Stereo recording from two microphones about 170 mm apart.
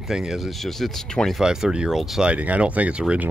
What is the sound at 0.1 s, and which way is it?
Speech, 5° right (ahead or behind).